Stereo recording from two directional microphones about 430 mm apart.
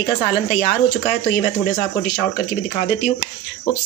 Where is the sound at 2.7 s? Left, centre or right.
Centre.